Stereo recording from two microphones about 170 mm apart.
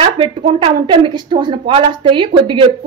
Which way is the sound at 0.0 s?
30° right (ahead or behind).